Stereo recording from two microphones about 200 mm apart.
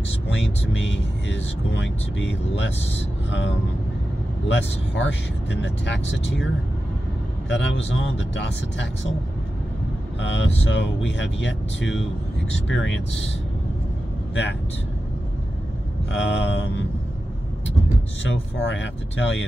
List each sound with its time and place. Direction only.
0.3 s speech: 65° left (ahead or behind)
4.5 s speech: 65° left (ahead or behind)
7.4 s speech: 65° left (ahead or behind)
10.2 s speech: 65° left (ahead or behind)
16.1 s speech: 65° left (ahead or behind)
18.3 s speech: 65° left (ahead or behind)